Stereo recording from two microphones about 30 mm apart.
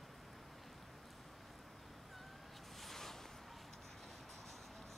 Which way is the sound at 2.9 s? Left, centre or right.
Centre.